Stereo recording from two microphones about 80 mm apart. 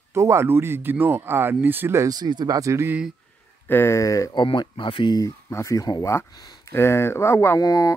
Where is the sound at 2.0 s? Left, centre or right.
Right.